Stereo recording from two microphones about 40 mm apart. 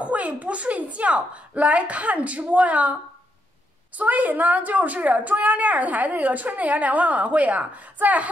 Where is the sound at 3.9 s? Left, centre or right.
Right.